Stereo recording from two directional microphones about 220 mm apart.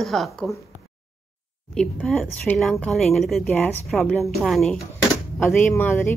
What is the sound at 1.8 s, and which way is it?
Speech, 5° left (ahead or behind).